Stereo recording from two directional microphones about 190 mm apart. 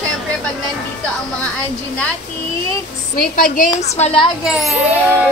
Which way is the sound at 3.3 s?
45° left (ahead or behind).